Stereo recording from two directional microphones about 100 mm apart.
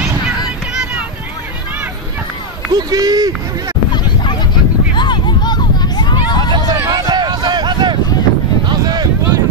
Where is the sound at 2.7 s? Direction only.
40° right (ahead or behind).